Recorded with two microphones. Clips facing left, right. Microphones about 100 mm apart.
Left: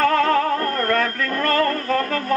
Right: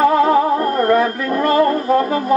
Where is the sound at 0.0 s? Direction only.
15° right (ahead or behind).